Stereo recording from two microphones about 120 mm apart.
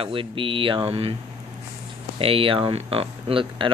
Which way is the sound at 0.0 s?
45° right (ahead or behind).